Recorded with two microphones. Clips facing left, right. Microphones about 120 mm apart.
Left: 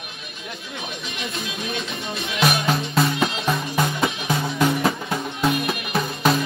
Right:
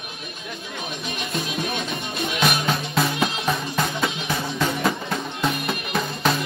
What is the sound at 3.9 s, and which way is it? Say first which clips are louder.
Music: left 2 dB; 15° left (ahead or behind).